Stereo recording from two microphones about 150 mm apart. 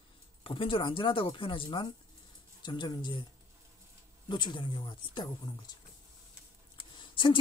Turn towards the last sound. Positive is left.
turn(degrees=30)  # may be behind; listen again after turning